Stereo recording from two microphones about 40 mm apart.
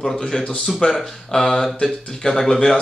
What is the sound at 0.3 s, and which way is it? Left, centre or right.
Speech, left.